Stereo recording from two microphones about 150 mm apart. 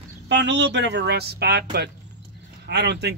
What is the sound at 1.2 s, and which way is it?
Speech, 90° right.